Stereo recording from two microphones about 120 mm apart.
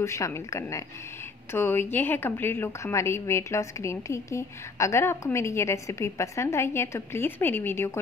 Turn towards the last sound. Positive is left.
turn(degrees=20)  # may be behind; listen again after turning